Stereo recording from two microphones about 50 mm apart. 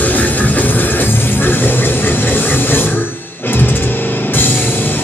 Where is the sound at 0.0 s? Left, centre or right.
Left.